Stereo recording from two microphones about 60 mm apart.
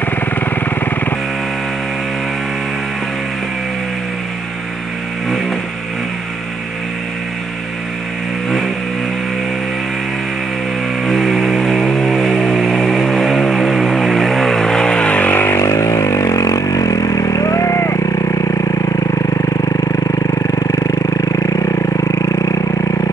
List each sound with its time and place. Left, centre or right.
11.1 s vehicle: centre; by 15.5 s left
15.5 s vehicle: left
17.9 s a sound: left
20.5 s vehicle: left